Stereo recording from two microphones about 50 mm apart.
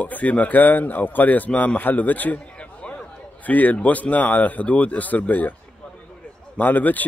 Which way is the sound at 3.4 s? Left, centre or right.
Left.